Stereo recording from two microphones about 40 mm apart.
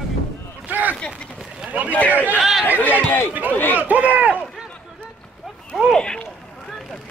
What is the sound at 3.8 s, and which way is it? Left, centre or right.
Speech, right.